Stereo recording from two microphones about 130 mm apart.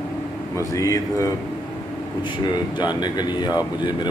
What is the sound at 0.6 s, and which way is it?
Speech, 25° left (ahead or behind).